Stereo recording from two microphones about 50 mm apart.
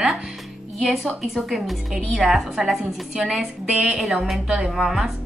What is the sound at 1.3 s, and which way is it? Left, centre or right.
A woman's voice, centre.